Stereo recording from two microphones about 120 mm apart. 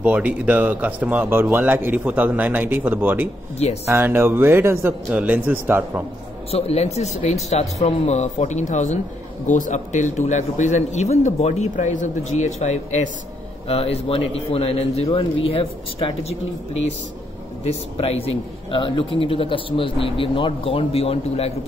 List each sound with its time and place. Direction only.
0.0 s speech: 10° right (ahead or behind)
6.5 s speech: 60° left (ahead or behind)
13.7 s speech: 55° left (ahead or behind)
17.6 s a man's voice: 55° left (ahead or behind)